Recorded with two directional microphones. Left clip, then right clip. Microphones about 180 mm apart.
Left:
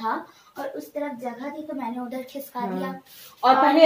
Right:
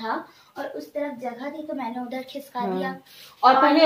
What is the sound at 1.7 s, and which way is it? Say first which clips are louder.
A child's voice: right 1 dB; 10° left (ahead or behind).